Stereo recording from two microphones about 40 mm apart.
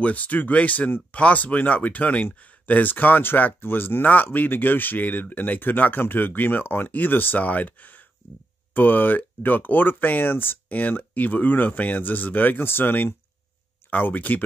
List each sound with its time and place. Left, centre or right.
0.0 s speech: left
4.0 s speech: left
13.8 s speech: left